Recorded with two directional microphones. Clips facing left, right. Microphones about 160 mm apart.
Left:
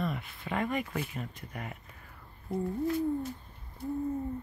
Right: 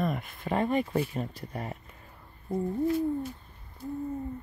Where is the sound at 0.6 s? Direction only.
30° right (ahead or behind).